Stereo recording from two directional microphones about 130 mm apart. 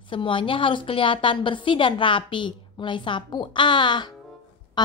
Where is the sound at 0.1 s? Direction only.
40° left (ahead or behind).